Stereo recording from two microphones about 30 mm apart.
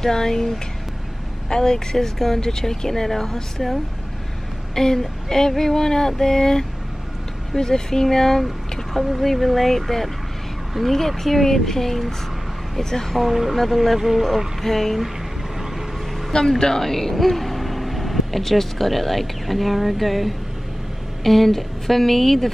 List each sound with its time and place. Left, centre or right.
0.0 s speech: centre
1.5 s speech: left
4.7 s speech: centre
8.5 s speech: centre
14.6 s speech: centre
16.3 s speech: centre